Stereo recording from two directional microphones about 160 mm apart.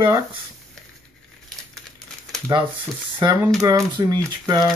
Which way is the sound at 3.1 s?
15° right (ahead or behind).